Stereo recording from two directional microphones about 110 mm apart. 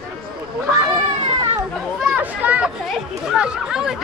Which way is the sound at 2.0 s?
10° right (ahead or behind).